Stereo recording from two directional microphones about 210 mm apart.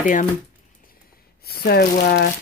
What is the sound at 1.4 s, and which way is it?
Speech, 45° left (ahead or behind).